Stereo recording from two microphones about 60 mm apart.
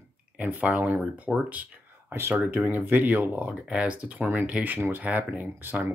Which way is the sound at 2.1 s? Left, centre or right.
Right.